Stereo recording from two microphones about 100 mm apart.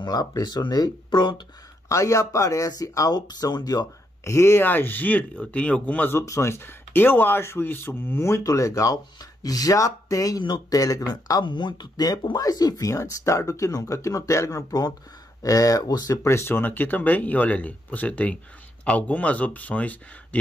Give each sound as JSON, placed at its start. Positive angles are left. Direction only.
{"t": 0.0, "sound": "speech", "side_deg": 40}
{"t": 1.9, "sound": "speech", "side_deg": 30}
{"t": 6.2, "sound": "speech", "side_deg": 30}
{"t": 16.3, "sound": "speech", "side_deg": 25}